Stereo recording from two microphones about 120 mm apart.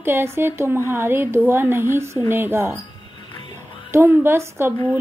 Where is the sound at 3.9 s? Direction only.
20° right (ahead or behind).